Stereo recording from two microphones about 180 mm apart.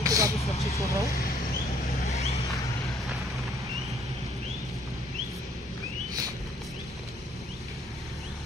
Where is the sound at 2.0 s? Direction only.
35° left (ahead or behind).